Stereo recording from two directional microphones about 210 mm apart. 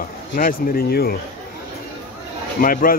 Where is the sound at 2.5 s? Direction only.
40° left (ahead or behind).